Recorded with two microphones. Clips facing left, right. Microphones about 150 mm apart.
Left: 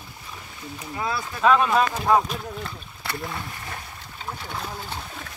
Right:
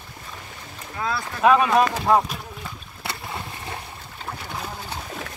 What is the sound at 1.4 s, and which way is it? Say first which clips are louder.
Speech: right 2 dB; 10° right (ahead or behind).